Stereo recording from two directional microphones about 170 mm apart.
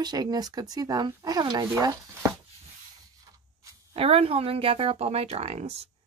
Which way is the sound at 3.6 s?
30° right (ahead or behind).